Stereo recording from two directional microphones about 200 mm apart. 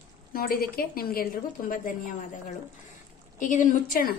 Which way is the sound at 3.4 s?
40° left (ahead or behind).